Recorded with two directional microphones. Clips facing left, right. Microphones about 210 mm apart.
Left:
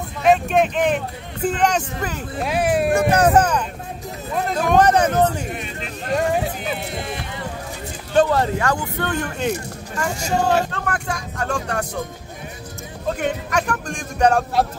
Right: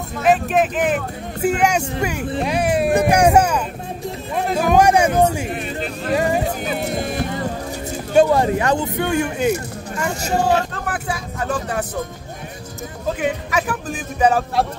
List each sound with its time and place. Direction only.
0.2 s speech: centre (ahead or behind)
2.4 s a man's voice: centre (ahead or behind)
3.1 s a man's voice: 10° right (ahead or behind)
6.8 s music: 45° right (ahead or behind)
8.1 s a man's voice: 10° right (ahead or behind)
13.2 s a man's voice: 5° right (ahead or behind)